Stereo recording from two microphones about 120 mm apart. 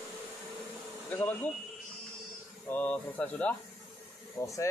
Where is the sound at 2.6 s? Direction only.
15° left (ahead or behind).